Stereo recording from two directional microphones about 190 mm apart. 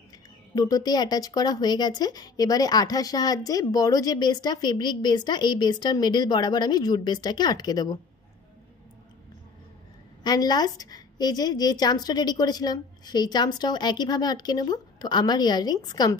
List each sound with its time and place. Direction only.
0.6 s a woman's voice: 20° left (ahead or behind)
10.2 s a woman's voice: 20° left (ahead or behind)